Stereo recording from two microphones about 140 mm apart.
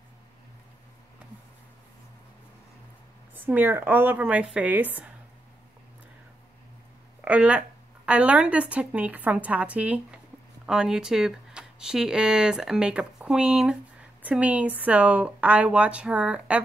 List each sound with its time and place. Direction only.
3.4 s a woman's voice: 15° right (ahead or behind)
7.2 s a woman's voice: 10° right (ahead or behind)